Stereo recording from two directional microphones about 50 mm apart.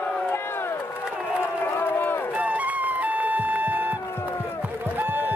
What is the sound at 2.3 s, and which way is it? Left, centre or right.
Music, right.